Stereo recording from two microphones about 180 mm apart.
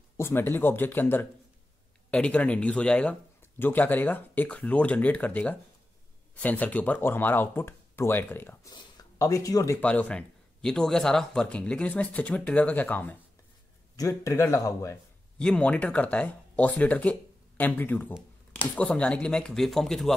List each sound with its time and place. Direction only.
0.2 s speech: 10° left (ahead or behind)
9.8 s speech: 10° left (ahead or behind)
15.3 s speech: 5° left (ahead or behind)